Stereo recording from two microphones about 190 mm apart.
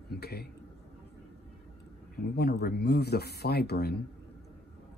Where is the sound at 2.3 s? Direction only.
60° left (ahead or behind).